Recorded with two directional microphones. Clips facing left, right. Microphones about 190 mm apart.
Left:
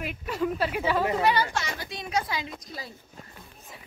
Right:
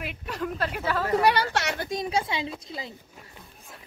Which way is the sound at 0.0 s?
5° left (ahead or behind).